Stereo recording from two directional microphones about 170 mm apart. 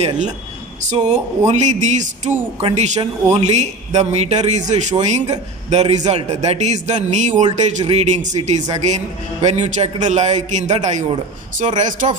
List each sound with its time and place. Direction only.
0.8 s a man's voice: 40° right (ahead or behind)